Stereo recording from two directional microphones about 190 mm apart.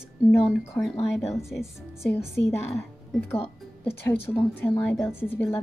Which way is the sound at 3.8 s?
10° left (ahead or behind).